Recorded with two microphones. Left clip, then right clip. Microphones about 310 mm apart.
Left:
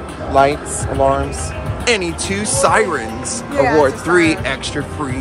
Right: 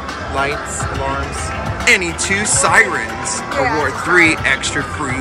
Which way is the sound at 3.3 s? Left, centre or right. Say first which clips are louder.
Left 3 dB; left.